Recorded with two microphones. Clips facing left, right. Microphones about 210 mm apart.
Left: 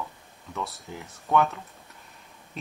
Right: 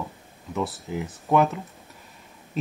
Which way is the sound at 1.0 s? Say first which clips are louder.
Right 3 dB; centre (ahead or behind).